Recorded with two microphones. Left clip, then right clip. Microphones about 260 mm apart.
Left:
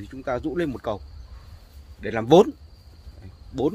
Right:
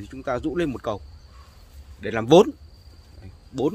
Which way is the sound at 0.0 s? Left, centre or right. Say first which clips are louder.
Right 1 dB; centre.